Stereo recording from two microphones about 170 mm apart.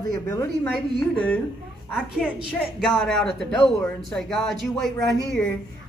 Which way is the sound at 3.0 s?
Centre (ahead or behind).